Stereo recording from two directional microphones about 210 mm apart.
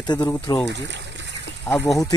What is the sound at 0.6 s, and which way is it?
Water, 55° right (ahead or behind).